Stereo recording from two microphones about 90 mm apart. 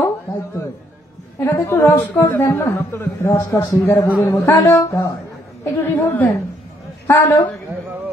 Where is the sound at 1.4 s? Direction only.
30° left (ahead or behind).